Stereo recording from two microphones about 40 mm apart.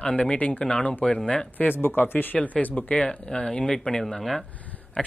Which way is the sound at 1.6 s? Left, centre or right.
Left.